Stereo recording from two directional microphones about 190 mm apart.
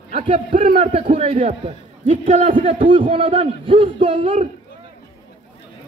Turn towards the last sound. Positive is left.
turn(degrees=-30)  # may be behind; listen again after turning